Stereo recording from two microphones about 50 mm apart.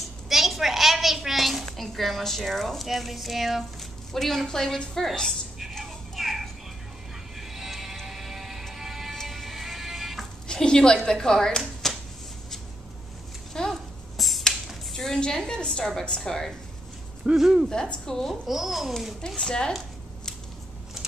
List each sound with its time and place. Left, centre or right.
0.3 s a sound: centre
4.1 s a woman's voice: centre
5.6 s music: centre
10.5 s a child's voice: centre
13.5 s a sound: centre
14.9 s a woman's voice: centre
17.4 s speech: centre
17.6 s a woman's voice: centre
18.5 s a child's voice: centre
19.2 s a woman's voice: centre